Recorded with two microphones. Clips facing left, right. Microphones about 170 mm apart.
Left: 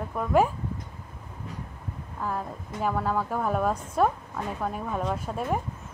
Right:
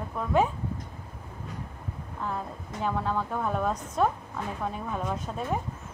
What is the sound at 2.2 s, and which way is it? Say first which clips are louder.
A woman's voice: left 2 dB; 5° left (ahead or behind).